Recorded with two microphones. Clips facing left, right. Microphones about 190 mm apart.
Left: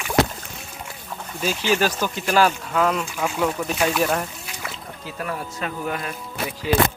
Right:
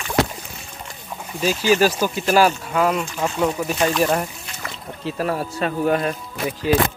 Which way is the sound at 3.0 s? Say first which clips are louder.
Right 2 dB; 10° left (ahead or behind).